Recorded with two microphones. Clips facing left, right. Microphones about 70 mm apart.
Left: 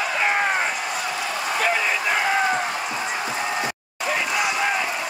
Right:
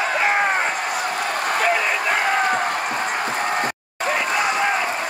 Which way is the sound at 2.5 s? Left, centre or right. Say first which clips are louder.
Right 3 dB; right.